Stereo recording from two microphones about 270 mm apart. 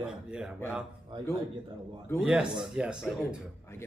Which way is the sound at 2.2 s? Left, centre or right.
Centre.